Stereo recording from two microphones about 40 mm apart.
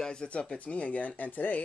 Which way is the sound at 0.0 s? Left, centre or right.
Left.